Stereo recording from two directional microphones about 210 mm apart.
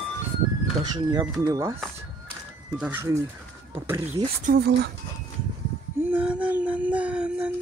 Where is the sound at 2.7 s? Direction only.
5° right (ahead or behind).